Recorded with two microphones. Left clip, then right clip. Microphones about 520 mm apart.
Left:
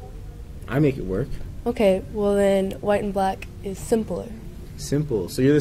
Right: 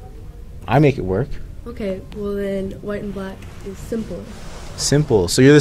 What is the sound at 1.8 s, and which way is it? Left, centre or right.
A woman's voice, left.